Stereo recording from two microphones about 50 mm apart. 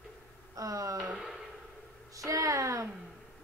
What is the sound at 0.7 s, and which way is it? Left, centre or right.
Speech, right.